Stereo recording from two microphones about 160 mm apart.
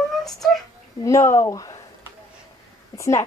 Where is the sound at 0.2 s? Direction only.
Centre (ahead or behind).